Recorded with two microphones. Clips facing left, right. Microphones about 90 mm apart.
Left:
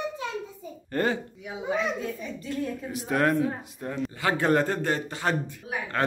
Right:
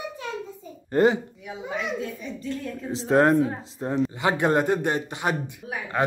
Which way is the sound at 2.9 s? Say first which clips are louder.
Right 6 dB; 25° right (ahead or behind).